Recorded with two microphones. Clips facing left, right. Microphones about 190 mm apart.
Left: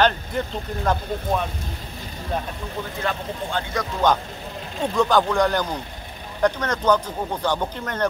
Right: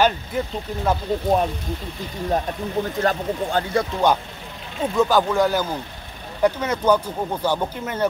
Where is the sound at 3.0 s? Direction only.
40° right (ahead or behind).